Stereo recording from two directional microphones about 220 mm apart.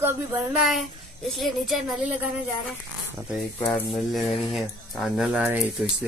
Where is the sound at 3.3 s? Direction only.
Centre (ahead or behind).